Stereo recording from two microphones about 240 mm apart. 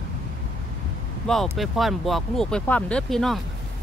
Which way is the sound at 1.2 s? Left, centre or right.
Centre.